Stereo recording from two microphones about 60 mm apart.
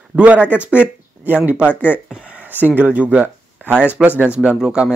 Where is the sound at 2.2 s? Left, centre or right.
Right.